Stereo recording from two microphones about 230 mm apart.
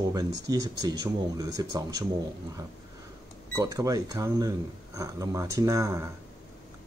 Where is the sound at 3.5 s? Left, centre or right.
Centre.